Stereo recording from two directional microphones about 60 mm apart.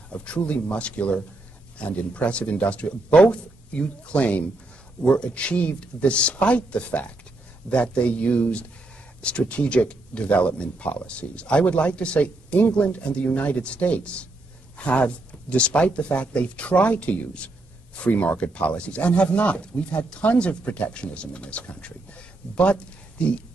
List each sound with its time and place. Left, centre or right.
0.1 s speech: left